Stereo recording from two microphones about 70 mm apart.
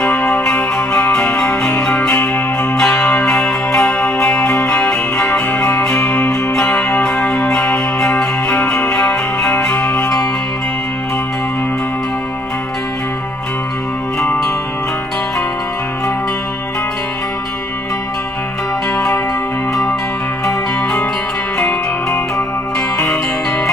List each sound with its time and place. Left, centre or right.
0.0 s music: centre
2.8 s music: centre
21.5 s music: left